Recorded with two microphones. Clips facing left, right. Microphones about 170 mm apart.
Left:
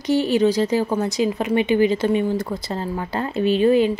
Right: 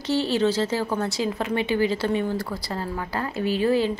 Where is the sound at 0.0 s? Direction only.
15° left (ahead or behind).